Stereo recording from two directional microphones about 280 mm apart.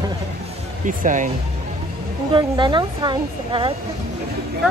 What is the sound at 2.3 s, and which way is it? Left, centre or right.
Speech, centre.